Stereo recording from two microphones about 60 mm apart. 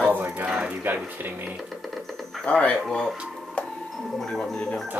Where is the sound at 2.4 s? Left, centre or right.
Centre.